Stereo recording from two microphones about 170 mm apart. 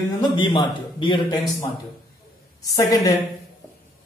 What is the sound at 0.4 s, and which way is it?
A man's voice, 25° left (ahead or behind).